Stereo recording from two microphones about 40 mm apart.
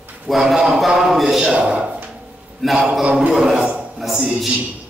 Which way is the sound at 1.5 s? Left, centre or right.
Right.